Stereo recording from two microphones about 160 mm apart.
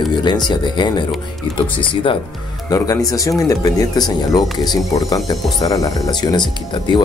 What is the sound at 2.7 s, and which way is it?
Speech, 20° left (ahead or behind).